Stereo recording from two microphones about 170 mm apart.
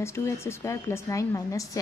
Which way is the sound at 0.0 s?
15° left (ahead or behind).